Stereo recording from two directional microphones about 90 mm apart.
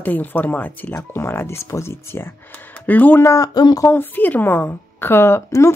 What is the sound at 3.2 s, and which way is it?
Speech, 40° left (ahead or behind).